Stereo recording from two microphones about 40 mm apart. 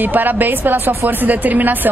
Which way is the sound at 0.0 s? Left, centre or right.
Right.